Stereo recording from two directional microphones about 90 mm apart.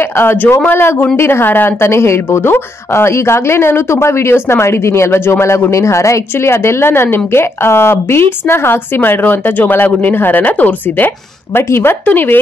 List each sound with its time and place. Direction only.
0.2 s a woman's voice: 25° left (ahead or behind)